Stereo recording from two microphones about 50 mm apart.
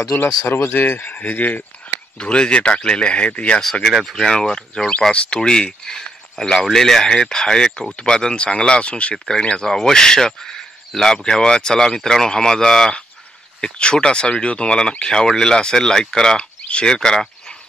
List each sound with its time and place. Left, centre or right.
0.1 s speech: left
2.1 s speech: centre
3.9 s speech: centre